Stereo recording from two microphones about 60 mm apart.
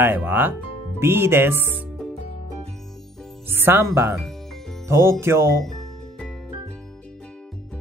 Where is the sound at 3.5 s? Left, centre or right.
Right.